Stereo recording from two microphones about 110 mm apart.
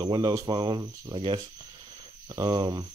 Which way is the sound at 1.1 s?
45° right (ahead or behind).